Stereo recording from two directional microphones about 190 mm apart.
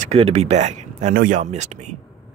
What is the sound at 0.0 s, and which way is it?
Speech, 35° right (ahead or behind).